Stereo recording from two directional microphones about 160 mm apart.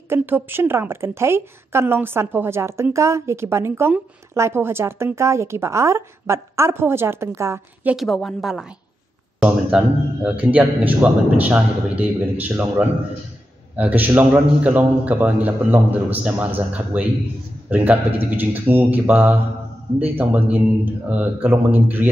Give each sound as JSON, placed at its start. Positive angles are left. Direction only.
{"t": 0.1, "sound": "a woman's voice", "side_deg": -15}
{"t": 7.9, "sound": "a woman's voice", "side_deg": 0}
{"t": 9.7, "sound": "a woman's voice", "side_deg": -5}